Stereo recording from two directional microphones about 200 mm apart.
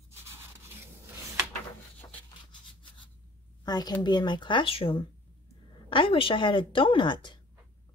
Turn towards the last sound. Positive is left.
turn(degrees=25)  # may be behind; listen again after turning